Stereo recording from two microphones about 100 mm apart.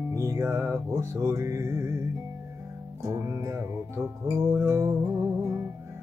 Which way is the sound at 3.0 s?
30° right (ahead or behind).